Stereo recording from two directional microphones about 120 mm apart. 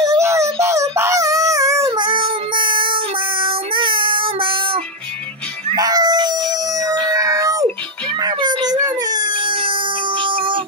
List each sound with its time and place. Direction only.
0.0 s dog: 25° right (ahead or behind)
1.9 s child singing: 40° right (ahead or behind)
5.8 s a sound: 30° right (ahead or behind)
8.2 s baby cry: 35° right (ahead or behind)